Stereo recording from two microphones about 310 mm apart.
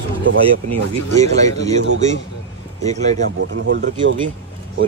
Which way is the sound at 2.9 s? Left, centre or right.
Right.